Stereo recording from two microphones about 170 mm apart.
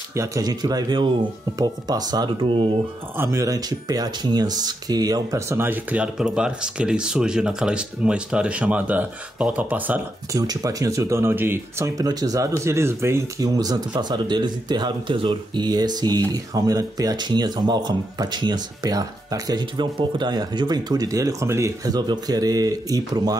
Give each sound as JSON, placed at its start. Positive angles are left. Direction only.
{"t": 0.1, "sound": "speech", "side_deg": -20}
{"t": 3.2, "sound": "speech", "side_deg": -15}
{"t": 10.3, "sound": "speech", "side_deg": -20}